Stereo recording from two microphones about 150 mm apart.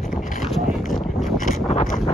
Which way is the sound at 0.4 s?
Centre (ahead or behind).